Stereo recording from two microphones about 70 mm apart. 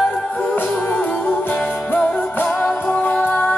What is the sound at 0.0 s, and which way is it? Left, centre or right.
Music, centre.